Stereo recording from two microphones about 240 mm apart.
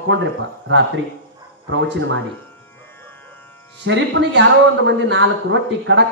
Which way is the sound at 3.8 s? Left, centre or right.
Right.